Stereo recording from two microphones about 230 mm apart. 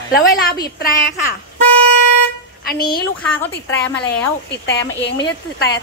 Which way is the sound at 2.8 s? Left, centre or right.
Centre.